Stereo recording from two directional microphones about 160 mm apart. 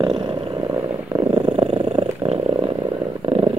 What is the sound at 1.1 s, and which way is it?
Purr, 30° right (ahead or behind).